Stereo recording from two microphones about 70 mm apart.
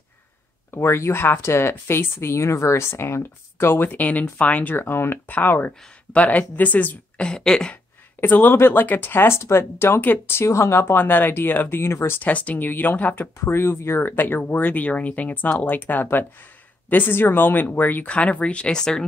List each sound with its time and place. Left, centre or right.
0.7 s speech: left
7.2 s a sound: centre
7.7 s speech: left
12.2 s speech: left
13.4 s speech: left; by 19.0 s centre